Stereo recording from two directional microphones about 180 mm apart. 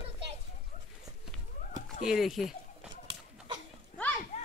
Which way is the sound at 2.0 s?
Centre (ahead or behind).